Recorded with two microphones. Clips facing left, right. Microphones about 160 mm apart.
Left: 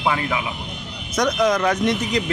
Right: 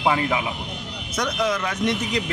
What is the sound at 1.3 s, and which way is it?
Speech, 40° left (ahead or behind).